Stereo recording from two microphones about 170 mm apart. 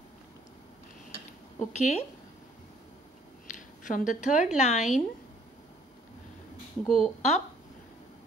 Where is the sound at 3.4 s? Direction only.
50° left (ahead or behind).